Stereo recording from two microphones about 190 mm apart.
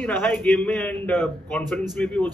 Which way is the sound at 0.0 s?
10° left (ahead or behind).